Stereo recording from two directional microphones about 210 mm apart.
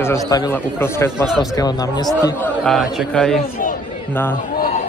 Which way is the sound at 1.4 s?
15° left (ahead or behind).